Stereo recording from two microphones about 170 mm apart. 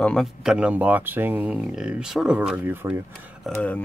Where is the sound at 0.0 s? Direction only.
Centre (ahead or behind).